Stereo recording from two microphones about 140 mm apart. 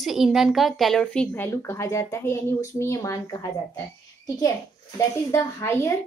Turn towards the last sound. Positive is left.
turn(degrees=20)  # may be behind; listen again after turning